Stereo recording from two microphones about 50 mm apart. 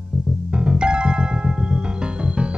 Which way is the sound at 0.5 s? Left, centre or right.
Centre.